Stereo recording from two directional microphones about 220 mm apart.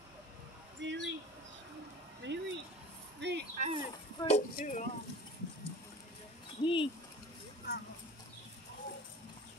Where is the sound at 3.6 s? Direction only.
25° right (ahead or behind).